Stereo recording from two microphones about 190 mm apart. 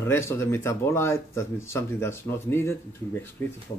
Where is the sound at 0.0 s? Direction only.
15° left (ahead or behind).